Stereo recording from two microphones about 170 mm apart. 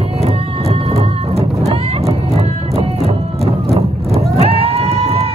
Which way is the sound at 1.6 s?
35° right (ahead or behind).